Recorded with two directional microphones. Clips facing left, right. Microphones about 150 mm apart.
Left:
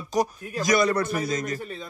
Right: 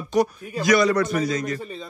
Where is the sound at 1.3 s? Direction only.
45° left (ahead or behind).